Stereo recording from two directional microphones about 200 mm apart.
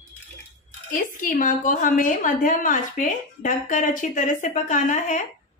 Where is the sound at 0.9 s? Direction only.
40° left (ahead or behind).